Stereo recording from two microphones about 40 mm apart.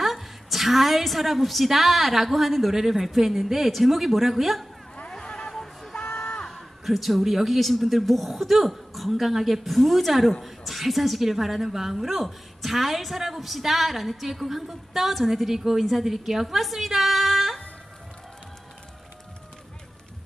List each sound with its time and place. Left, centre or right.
0.0 s a woman's voice: centre
5.1 s a sound: centre
6.5 s a woman's voice: centre